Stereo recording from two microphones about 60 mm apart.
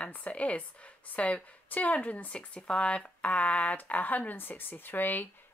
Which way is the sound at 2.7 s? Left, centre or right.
Centre.